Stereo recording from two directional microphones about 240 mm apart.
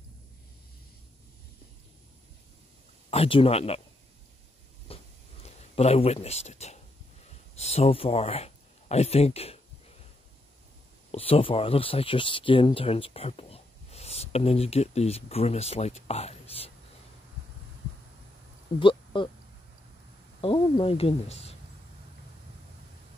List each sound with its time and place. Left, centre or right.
3.1 s a woman's voice: left
4.8 s a sound: left
7.2 s speech: left
11.1 s speech: left
18.8 s speech: left
20.3 s a woman's voice: centre